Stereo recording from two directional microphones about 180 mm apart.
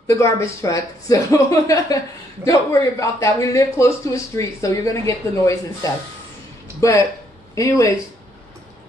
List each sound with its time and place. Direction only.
0.0 s speech: 15° left (ahead or behind)